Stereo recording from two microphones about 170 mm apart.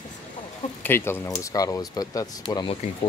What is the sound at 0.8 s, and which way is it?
Speech, 15° left (ahead or behind).